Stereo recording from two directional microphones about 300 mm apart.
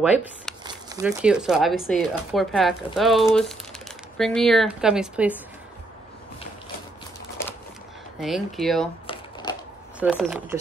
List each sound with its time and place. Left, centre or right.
0.0 s speech: centre
8.2 s speech: centre
9.0 s a sound: centre
9.9 s speech: centre